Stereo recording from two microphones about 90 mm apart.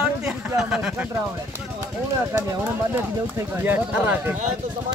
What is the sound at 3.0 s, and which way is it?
Speech, 25° right (ahead or behind).